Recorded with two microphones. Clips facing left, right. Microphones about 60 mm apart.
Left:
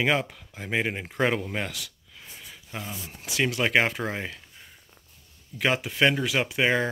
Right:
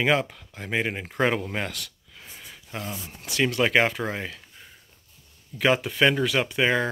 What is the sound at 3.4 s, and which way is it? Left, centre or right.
Speech, centre.